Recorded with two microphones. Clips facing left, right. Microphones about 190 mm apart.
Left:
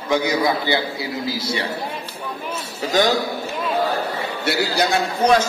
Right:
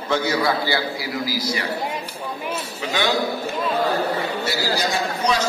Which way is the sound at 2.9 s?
40° left (ahead or behind).